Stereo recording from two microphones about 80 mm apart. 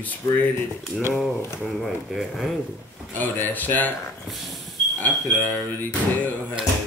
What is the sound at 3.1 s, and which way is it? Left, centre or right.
Speech, left.